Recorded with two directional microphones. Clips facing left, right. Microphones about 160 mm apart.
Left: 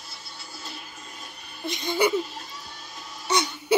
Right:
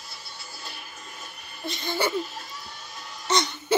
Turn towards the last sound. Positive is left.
turn(degrees=10)  # may be behind; listen again after turning